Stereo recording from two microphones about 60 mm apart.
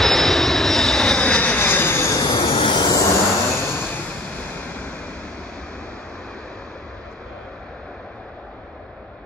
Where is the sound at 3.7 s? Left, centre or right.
Left.